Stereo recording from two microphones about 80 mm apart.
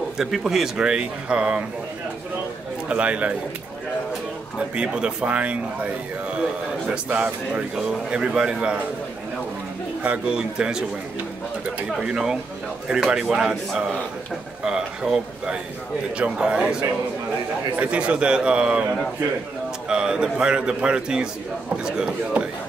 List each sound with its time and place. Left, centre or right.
0.2 s speech: centre
2.9 s speech: centre
4.6 s speech: centre
10.0 s speech: centre
12.0 s speech: centre
19.9 s speech: centre